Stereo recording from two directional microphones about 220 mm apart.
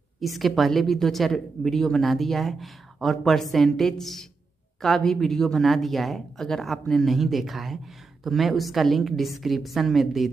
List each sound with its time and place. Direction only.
0.2 s speech: centre (ahead or behind)